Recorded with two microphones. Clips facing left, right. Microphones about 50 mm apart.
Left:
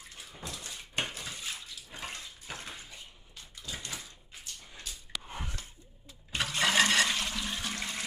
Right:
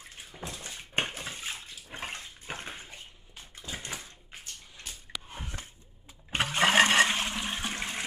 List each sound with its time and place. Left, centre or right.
0.5 s bathtub: right
4.9 s a sound: right
6.3 s toilet flush: right